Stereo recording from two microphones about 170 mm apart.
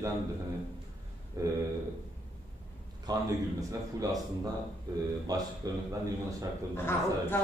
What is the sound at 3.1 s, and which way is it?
Speech, 25° right (ahead or behind).